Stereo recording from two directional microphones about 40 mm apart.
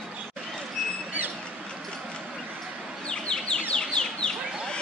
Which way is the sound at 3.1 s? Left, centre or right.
Left.